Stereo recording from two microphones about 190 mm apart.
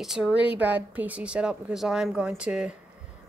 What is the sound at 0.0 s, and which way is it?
Speech, 5° right (ahead or behind).